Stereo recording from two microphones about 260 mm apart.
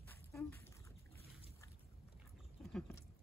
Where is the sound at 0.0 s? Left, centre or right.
Centre.